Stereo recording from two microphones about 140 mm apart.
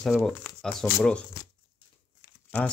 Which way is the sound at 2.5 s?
15° left (ahead or behind).